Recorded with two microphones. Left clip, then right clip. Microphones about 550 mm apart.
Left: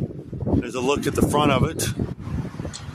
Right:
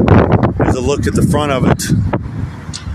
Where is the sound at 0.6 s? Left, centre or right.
Left.